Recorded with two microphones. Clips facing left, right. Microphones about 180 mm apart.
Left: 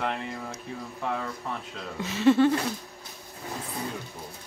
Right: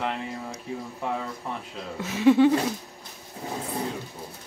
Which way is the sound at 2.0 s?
10° right (ahead or behind).